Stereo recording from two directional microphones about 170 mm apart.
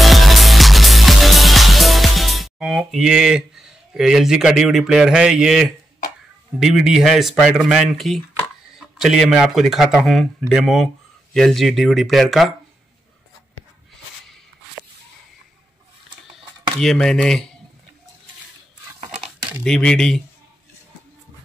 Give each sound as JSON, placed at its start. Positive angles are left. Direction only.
{"t": 0.0, "sound": "music", "side_deg": 0}
{"t": 6.6, "sound": "speech", "side_deg": 0}
{"t": 16.8, "sound": "speech", "side_deg": 5}
{"t": 18.9, "sound": "a sound", "side_deg": -40}
{"t": 19.6, "sound": "speech", "side_deg": 5}